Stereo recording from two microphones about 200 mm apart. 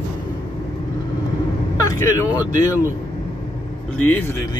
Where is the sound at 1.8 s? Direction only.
15° left (ahead or behind).